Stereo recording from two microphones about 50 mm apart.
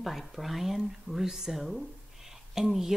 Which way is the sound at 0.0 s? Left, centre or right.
Centre.